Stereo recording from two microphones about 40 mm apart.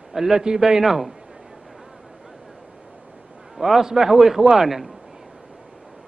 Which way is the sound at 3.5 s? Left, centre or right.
Centre.